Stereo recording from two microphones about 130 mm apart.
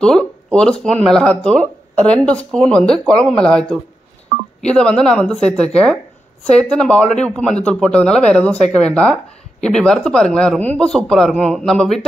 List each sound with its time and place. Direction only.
0.0 s speech: 5° left (ahead or behind)